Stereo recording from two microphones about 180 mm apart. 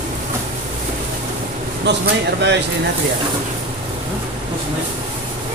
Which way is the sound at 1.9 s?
75° right (ahead or behind).